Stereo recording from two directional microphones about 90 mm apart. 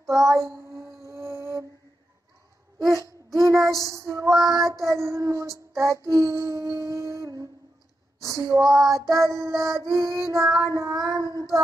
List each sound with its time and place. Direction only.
0.2 s child singing: 35° right (ahead or behind)
3.3 s child singing: 35° right (ahead or behind)
11.1 s child singing: 40° left (ahead or behind)